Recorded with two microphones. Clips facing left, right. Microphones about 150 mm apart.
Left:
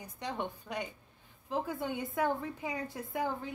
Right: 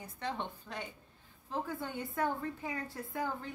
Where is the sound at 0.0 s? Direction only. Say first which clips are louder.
Left 1 dB; 15° left (ahead or behind).